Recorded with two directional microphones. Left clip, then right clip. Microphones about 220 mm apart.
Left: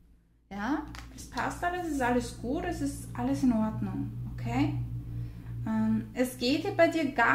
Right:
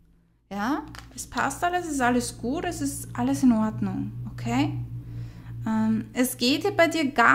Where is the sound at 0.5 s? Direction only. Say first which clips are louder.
Right 5 dB; 35° right (ahead or behind).